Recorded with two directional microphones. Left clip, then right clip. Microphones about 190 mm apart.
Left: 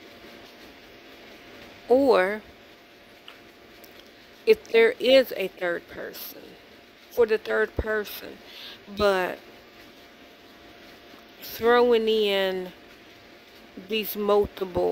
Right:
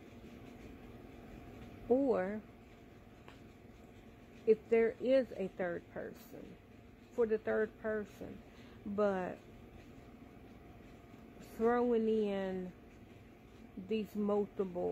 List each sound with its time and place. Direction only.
1.9 s speech: 25° left (ahead or behind)
4.5 s speech: 25° left (ahead or behind)
7.2 s speech: 20° left (ahead or behind)
11.6 s speech: 20° left (ahead or behind)
13.8 s speech: 20° left (ahead or behind)